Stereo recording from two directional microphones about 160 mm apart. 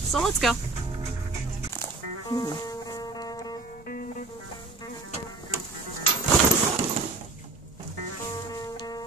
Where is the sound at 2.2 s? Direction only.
25° left (ahead or behind).